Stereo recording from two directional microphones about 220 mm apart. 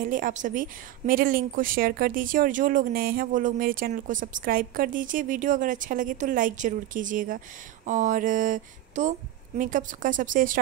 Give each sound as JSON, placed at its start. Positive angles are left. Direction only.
{"t": 0.0, "sound": "a woman's voice", "side_deg": -35}